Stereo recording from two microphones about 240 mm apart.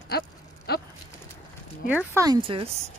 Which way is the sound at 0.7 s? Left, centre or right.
Left.